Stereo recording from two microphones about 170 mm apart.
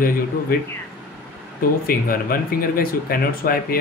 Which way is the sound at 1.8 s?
60° left (ahead or behind).